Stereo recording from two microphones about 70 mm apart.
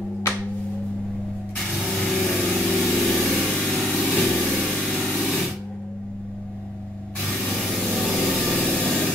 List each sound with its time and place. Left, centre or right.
1.8 s vehicle: centre
5.1 s spray: centre
7.2 s spray: centre
8.7 s vehicle: centre